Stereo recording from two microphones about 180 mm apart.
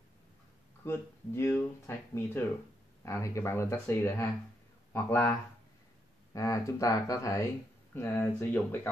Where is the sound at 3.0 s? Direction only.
15° left (ahead or behind).